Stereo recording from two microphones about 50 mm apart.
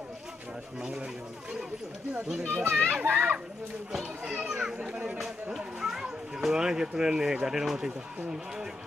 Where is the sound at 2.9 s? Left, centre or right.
Right.